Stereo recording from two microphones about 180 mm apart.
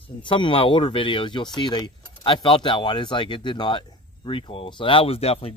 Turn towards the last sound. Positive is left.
turn(degrees=35)  # may be behind; listen again after turning